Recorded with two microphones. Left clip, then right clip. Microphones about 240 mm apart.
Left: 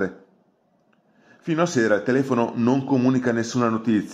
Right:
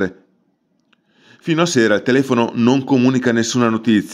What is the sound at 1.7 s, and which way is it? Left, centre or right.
Speech, right.